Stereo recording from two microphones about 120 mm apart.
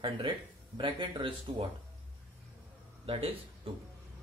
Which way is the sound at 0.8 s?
45° right (ahead or behind).